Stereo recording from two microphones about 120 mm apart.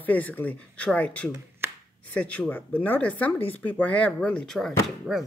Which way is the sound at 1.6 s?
20° right (ahead or behind).